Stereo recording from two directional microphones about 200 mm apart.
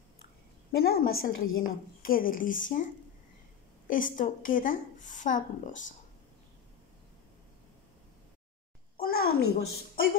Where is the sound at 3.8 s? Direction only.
40° left (ahead or behind).